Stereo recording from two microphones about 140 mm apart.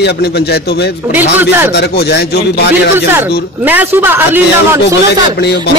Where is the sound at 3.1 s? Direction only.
15° right (ahead or behind).